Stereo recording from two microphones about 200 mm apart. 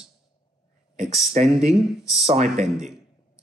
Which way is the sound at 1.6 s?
35° right (ahead or behind).